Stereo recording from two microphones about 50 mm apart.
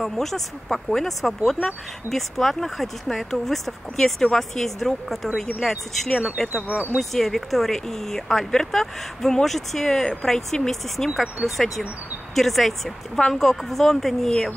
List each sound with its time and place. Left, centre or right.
0.0 s speech: centre
6.7 s speech: right
7.0 s speech: centre